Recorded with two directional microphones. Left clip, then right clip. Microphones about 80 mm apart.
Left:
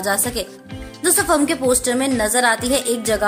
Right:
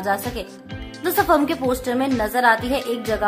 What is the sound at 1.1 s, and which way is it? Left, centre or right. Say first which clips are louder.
Speech: even; centre.